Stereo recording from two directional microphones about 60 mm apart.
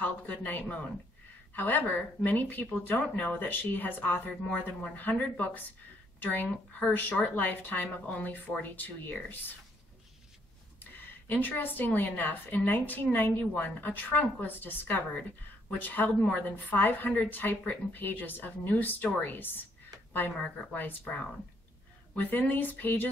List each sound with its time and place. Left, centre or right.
0.0 s a woman's voice: left
6.1 s speech: left
10.8 s a woman's voice: left
20.1 s a sound: left
20.7 s a woman's voice: left